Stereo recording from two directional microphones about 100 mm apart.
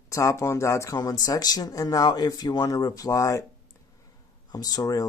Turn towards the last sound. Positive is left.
turn(degrees=40)  # may be behind; listen again after turning